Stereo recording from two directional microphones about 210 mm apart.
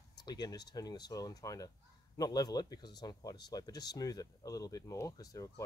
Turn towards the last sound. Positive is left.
turn(degrees=15)  # may be behind; listen again after turning